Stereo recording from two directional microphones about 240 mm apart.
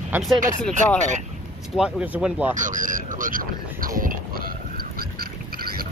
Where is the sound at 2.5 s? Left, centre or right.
Right.